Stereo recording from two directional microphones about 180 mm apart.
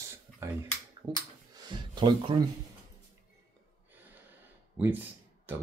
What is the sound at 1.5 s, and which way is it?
Speech, 25° right (ahead or behind).